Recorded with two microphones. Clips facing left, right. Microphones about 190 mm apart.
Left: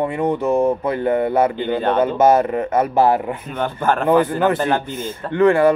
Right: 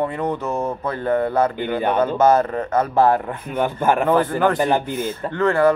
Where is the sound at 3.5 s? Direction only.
10° right (ahead or behind).